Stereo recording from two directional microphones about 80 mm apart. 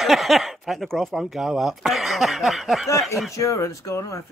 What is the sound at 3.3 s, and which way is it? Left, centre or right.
Speech, left.